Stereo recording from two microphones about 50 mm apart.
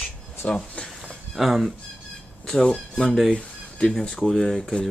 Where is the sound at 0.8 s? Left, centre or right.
Left.